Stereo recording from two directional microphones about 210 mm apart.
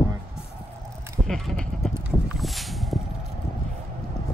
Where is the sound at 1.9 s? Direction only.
5° right (ahead or behind).